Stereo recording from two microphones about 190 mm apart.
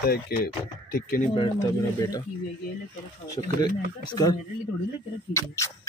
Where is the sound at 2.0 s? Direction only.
20° left (ahead or behind).